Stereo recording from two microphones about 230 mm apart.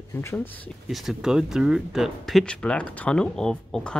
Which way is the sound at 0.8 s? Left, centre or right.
Centre.